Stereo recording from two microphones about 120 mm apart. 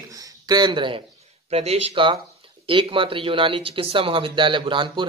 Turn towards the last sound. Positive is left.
turn(degrees=-45)  # may be behind; listen again after turning